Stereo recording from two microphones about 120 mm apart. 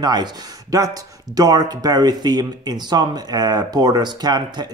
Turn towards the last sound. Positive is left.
turn(degrees=-35)  # may be behind; listen again after turning